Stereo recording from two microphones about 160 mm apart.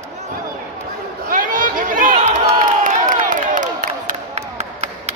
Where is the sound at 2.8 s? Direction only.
55° right (ahead or behind).